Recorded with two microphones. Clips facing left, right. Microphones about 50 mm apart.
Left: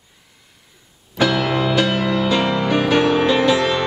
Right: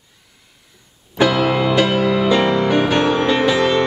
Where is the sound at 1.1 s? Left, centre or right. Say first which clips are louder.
Right 2 dB; centre.